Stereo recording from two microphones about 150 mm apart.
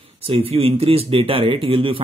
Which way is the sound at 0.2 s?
40° right (ahead or behind).